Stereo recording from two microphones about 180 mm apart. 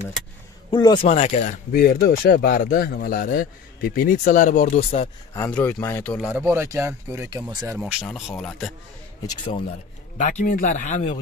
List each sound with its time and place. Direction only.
0.7 s speech: 25° left (ahead or behind)
1.0 s speech: 40° left (ahead or behind)
4.7 s speech: 30° left (ahead or behind)
5.3 s speech: 10° left (ahead or behind)
6.4 s speech: 15° right (ahead or behind)
7.8 s speech: centre (ahead or behind)
9.3 s speech: 25° left (ahead or behind)
10.1 s speech: 45° left (ahead or behind)